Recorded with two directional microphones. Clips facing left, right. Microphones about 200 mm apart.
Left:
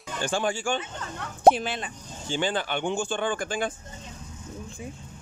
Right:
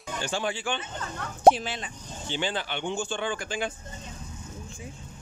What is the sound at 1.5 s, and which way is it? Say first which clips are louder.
Speech: left 1 dB; 55° left (ahead or behind).